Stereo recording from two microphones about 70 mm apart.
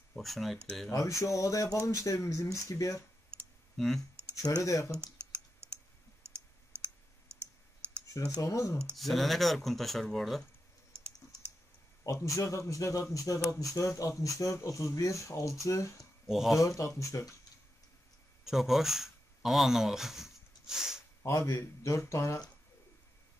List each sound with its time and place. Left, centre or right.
0.1 s speech: centre
0.9 s speech: left
3.7 s speech: centre
4.4 s speech: left
5.1 s typing: right
8.4 s speech: left
8.9 s speech: centre
10.9 s typing: right
12.0 s speech: left
16.3 s speech: centre
16.5 s speech: left
18.4 s speech: centre
21.2 s a man's voice: left